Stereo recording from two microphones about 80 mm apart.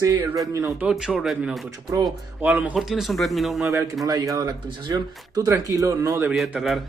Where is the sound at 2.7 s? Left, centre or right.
Centre.